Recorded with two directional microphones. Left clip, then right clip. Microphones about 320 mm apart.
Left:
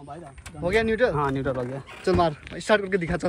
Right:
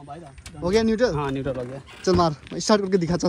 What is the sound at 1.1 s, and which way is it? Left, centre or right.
Speech, centre.